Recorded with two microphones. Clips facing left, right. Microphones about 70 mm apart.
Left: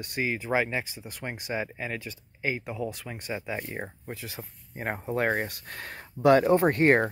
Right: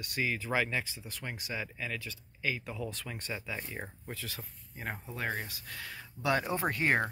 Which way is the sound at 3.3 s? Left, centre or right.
Left.